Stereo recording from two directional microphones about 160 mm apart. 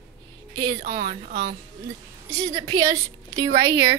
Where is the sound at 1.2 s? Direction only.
55° right (ahead or behind).